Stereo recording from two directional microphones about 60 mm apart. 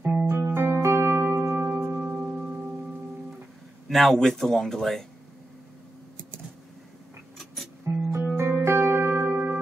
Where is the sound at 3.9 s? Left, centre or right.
Centre.